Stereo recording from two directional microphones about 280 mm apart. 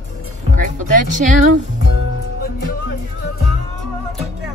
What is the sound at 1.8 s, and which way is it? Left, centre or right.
Music, left.